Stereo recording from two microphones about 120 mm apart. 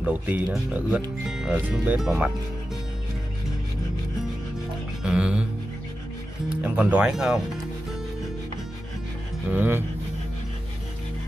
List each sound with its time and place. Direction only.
0.0 s speech: 10° right (ahead or behind)
5.0 s speech: 10° right (ahead or behind)
6.5 s speech: 10° right (ahead or behind)
9.5 s speech: 15° right (ahead or behind)